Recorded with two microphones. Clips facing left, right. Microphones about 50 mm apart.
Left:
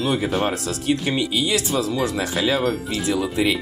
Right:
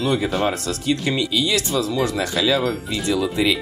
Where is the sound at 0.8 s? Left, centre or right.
Right.